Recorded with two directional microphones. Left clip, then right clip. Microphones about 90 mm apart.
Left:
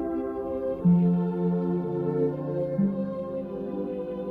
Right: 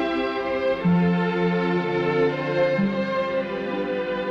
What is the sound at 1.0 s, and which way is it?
Music, 25° right (ahead or behind).